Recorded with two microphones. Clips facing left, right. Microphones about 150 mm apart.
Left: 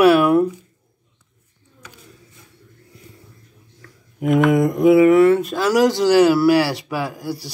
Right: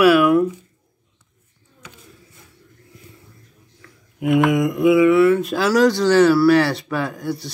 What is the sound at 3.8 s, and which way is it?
Speech, 40° left (ahead or behind).